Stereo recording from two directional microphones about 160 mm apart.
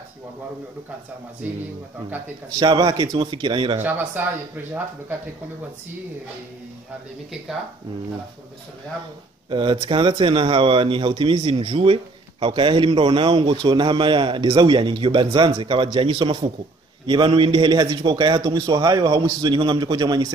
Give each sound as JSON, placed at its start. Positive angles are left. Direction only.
{"t": 2.6, "sound": "a man's voice", "side_deg": -25}
{"t": 3.8, "sound": "speech", "side_deg": -10}
{"t": 9.5, "sound": "a man's voice", "side_deg": -30}